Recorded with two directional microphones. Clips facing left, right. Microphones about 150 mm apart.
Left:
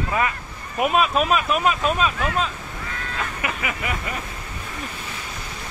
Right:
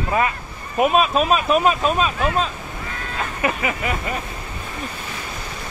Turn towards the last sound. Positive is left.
turn(degrees=-30)  # may be behind; listen again after turning